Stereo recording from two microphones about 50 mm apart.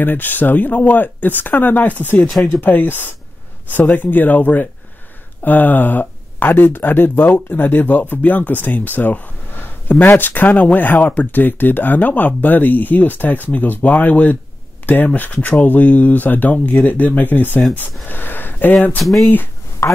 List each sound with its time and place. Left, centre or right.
0.0 s speech: left
19.8 s speech: left